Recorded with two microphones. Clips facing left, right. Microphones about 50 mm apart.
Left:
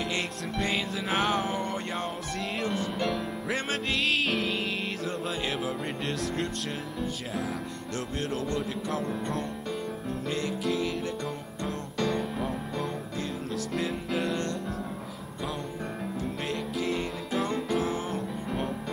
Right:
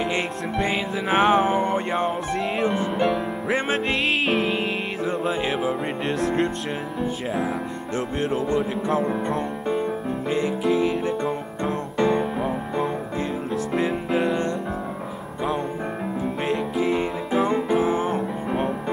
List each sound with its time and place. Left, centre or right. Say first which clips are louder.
0.0 s music: right 7 dB; centre
8.2 s music: right 8 dB; centre
10.3 s music: right 8 dB; centre
16.2 s music: right 9 dB; centre
18.1 s music: right 7 dB; right